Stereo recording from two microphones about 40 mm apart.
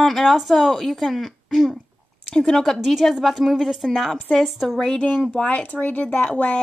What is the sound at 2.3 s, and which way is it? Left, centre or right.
Speech, centre.